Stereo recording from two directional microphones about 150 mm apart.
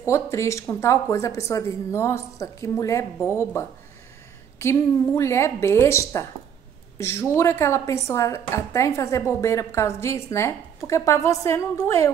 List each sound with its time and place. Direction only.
0.0 s a woman's voice: 20° left (ahead or behind)